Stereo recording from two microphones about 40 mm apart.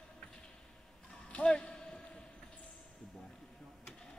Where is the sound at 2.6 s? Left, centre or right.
Centre.